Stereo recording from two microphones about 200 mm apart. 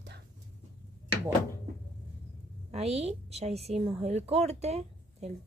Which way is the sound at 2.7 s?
30° right (ahead or behind).